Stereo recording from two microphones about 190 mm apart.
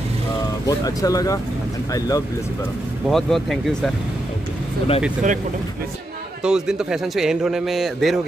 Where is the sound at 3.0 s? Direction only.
Centre (ahead or behind).